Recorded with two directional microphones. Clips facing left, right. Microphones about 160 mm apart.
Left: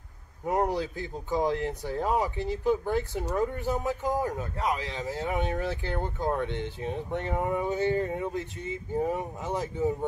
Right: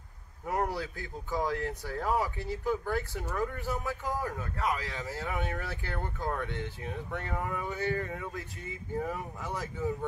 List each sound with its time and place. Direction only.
0.5 s speech: 20° left (ahead or behind)